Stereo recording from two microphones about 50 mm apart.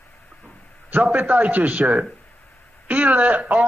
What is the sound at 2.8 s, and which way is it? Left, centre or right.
Speech, right.